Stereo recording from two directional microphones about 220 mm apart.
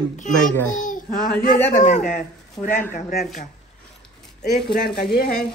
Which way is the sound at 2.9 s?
45° left (ahead or behind).